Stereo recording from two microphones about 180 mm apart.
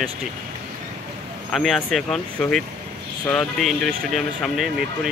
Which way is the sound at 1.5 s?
Centre (ahead or behind).